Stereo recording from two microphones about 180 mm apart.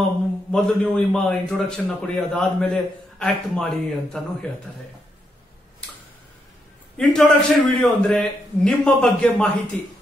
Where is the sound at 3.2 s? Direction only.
5° left (ahead or behind).